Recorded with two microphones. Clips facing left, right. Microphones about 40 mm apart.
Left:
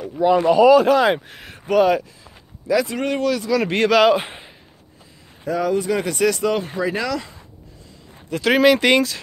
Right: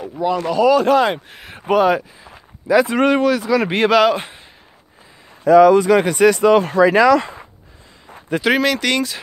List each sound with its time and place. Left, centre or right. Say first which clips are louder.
0.3 s speech: left 4 dB; centre
0.7 s speech: right 2 dB; centre
2.2 s a sound: right 3 dB; right
3.2 s speech: right 4 dB; right; by 4.1 s centre
5.4 s a man's voice: right 11 dB; right
6.0 s speech: right 6 dB; right
6.5 s a man's voice: right 10 dB; right
7.1 s speech: right 12 dB; right
8.3 s speech: right 5 dB; right
8.6 s speech: left 4 dB; centre